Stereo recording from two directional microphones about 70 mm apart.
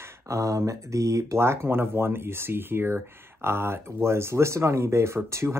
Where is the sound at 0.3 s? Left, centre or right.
Right.